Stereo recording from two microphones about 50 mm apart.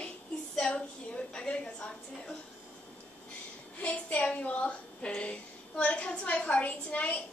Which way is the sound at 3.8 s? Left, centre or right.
Left.